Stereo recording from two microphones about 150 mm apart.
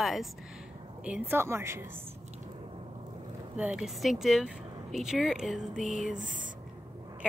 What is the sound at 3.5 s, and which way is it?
Speech, 5° right (ahead or behind).